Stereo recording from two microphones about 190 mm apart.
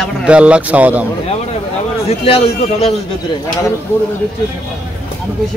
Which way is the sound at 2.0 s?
30° left (ahead or behind).